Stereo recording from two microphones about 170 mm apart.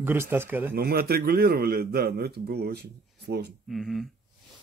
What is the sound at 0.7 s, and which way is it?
A man's voice, 65° right (ahead or behind).